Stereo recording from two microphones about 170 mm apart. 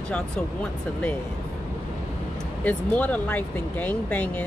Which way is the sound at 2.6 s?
10° left (ahead or behind).